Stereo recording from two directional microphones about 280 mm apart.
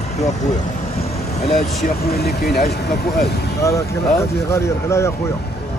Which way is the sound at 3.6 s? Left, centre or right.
Centre.